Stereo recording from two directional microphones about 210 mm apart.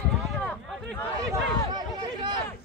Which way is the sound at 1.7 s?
20° right (ahead or behind).